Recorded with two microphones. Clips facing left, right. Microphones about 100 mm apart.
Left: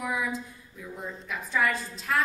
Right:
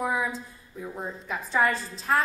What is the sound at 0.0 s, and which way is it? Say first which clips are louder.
A woman's voice: right 3 dB; 35° right (ahead or behind).